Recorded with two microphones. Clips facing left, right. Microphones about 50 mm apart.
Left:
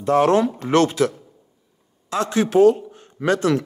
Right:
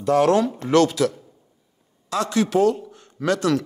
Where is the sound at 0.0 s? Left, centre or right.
Left.